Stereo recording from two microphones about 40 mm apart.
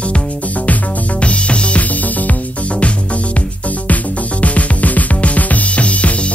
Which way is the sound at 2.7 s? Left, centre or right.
Left.